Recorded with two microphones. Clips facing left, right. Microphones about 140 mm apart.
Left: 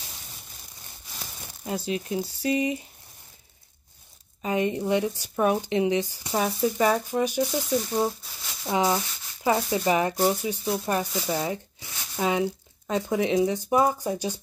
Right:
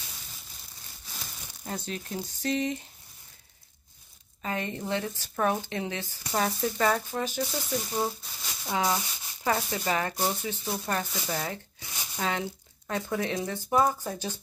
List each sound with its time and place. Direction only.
1.9 s speech: 10° left (ahead or behind)
4.4 s speech: 15° left (ahead or behind)
8.6 s speech: 20° left (ahead or behind)